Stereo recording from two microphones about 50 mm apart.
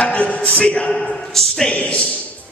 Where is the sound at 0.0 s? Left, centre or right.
Left.